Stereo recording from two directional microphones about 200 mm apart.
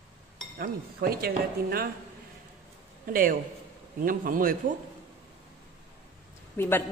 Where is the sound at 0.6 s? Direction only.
50° right (ahead or behind).